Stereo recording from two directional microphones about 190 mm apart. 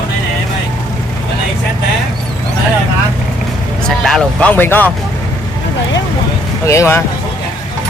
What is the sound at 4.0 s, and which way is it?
Speech, 5° left (ahead or behind).